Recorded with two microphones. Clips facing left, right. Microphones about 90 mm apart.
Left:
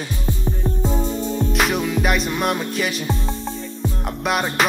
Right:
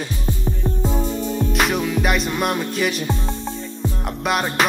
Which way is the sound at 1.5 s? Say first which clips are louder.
Even; centre (ahead or behind).